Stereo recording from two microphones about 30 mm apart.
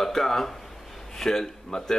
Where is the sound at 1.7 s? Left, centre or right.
Centre.